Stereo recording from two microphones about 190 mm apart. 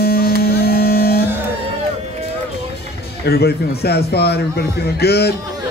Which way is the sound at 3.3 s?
55° left (ahead or behind).